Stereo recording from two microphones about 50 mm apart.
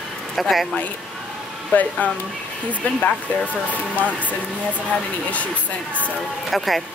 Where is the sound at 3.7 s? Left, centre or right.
Left.